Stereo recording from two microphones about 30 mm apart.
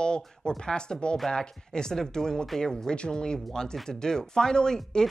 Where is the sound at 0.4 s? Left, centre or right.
Left.